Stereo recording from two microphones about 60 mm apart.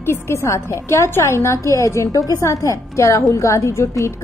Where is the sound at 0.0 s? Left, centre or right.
Left.